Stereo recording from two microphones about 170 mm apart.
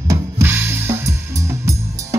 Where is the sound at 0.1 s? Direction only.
15° right (ahead or behind).